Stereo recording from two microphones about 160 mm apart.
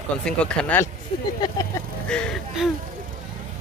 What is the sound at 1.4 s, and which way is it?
Speech, 25° left (ahead or behind).